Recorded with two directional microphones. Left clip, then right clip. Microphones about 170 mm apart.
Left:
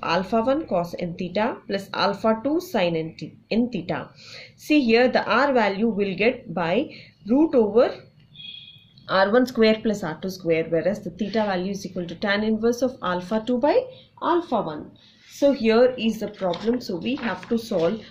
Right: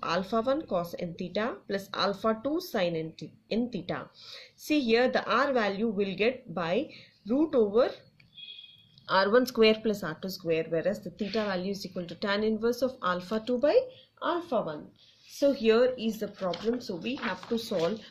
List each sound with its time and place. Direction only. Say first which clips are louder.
0.0 s speech: left 7 dB; 20° right (ahead or behind)
9.0 s speech: left 5 dB; 30° right (ahead or behind)